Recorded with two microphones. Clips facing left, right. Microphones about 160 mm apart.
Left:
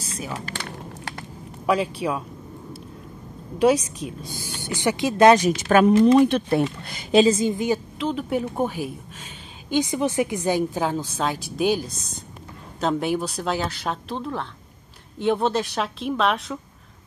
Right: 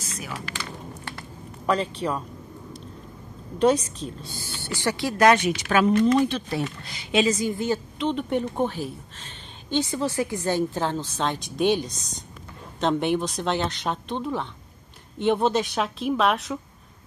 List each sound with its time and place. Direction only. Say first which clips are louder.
0.0 s a sound: left 3 dB; 30° left (ahead or behind)
0.6 s a sound: left 1 dB; 60° left (ahead or behind)
1.7 s a woman's voice: left 2 dB; 10° left (ahead or behind)
3.5 s a woman's voice: left 2 dB; 10° left (ahead or behind)
5.3 s speech: left 4 dB; 45° left (ahead or behind)
6.1 s speech: left 6 dB; 60° left (ahead or behind)
7.1 s a woman's voice: left 5 dB; 30° left (ahead or behind); by 7.8 s 15° left (ahead or behind)
8.0 s a woman's voice: even; 5° left (ahead or behind)